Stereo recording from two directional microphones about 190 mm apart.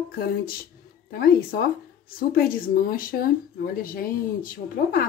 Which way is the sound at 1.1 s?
55° left (ahead or behind).